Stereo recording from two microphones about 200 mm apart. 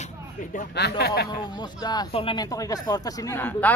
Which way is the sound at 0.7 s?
55° left (ahead or behind).